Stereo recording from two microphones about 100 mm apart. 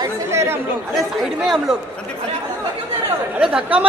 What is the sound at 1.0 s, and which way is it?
Speech, centre (ahead or behind).